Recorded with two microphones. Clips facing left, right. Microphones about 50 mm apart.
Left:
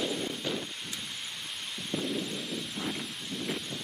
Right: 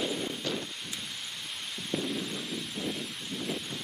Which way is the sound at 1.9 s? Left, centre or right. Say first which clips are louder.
Even; centre.